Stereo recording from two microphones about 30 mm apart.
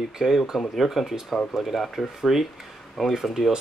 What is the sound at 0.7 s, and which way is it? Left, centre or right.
Speech, centre.